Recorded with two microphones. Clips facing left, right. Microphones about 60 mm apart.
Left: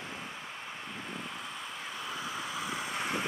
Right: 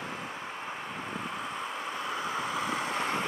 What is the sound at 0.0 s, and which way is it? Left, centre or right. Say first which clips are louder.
Vehicle: right 4 dB; right.